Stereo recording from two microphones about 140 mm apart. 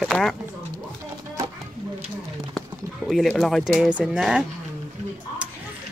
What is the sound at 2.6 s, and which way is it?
Speech, centre (ahead or behind).